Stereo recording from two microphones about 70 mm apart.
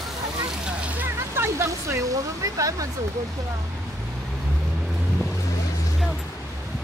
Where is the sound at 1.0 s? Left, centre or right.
Right.